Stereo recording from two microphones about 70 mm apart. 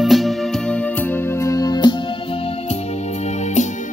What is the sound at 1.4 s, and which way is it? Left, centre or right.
Music, left.